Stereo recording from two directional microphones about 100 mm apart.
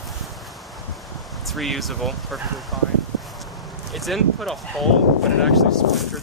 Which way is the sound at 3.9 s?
Centre (ahead or behind).